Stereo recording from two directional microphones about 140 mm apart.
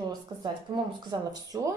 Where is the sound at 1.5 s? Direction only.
25° right (ahead or behind).